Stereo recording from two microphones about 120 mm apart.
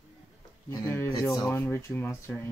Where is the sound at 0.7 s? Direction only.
20° left (ahead or behind).